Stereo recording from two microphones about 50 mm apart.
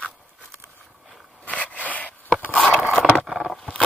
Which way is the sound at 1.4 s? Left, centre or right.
Left.